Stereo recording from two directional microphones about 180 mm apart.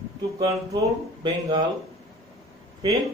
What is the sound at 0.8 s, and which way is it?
Speech, 25° right (ahead or behind).